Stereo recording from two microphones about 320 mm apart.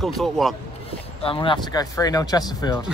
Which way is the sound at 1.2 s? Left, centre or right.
Centre.